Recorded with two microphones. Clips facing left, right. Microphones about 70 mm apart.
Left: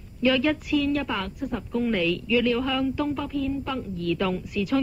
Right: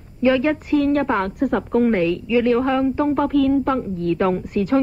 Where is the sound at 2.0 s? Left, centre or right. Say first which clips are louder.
Right 5 dB; right.